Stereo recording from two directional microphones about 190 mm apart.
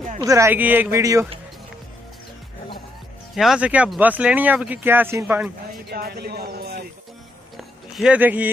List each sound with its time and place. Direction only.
0.2 s speech: 15° right (ahead or behind)
3.3 s speech: 5° right (ahead or behind)
5.9 s speech: 55° right (ahead or behind)
7.5 s a sound: 5° right (ahead or behind)